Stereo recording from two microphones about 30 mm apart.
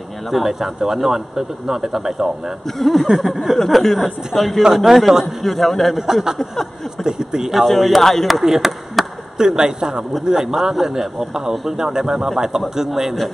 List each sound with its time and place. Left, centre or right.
0.3 s speech: centre
2.8 s speech: centre
3.2 s speech: centre
3.5 s speech: centre
4.7 s speech: centre
5.4 s speech: centre
6.3 s a sound: centre
7.1 s speech: right
7.6 s speech: centre
8.5 s chop: centre
9.4 s speech: right